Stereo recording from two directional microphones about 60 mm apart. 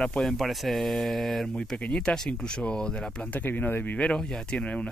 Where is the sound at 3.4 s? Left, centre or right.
Left.